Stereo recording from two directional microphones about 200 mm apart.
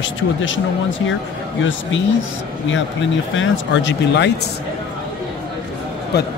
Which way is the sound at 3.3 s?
70° left (ahead or behind).